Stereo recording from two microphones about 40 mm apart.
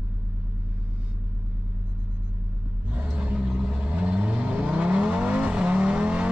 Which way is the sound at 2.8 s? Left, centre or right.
Right.